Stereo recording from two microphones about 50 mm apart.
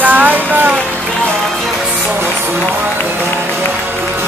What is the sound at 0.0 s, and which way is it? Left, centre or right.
Music, right.